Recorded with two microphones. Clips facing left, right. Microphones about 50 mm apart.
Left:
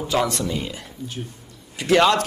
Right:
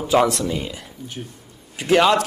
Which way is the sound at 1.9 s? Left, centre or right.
Centre.